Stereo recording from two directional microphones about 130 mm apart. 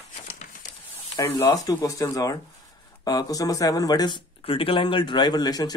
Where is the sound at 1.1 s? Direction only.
25° left (ahead or behind).